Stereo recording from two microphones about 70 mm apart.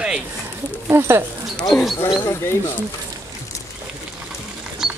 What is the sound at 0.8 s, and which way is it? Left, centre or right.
Speech, right.